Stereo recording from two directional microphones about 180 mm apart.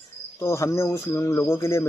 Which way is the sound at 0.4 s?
15° left (ahead or behind).